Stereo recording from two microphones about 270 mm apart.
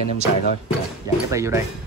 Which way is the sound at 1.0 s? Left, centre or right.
Centre.